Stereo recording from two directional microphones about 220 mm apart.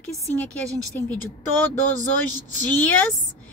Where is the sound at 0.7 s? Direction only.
15° right (ahead or behind).